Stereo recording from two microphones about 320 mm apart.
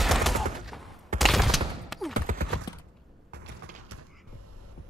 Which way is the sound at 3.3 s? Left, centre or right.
Right.